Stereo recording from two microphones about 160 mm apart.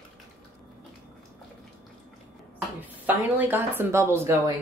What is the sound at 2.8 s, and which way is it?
Speech, 10° right (ahead or behind).